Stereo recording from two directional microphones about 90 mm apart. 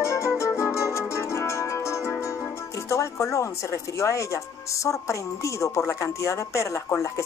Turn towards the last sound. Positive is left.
turn(degrees=35)  # may be behind; listen again after turning